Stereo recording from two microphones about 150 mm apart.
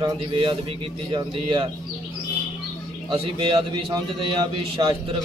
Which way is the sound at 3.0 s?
35° right (ahead or behind).